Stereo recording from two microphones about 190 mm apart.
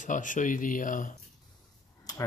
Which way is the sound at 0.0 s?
40° left (ahead or behind).